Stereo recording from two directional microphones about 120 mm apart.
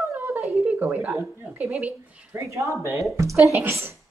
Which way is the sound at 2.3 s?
25° right (ahead or behind).